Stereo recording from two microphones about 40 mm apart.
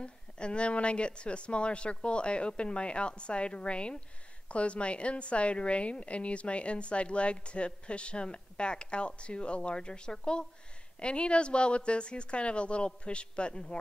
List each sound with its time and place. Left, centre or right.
0.0 s a woman's voice: left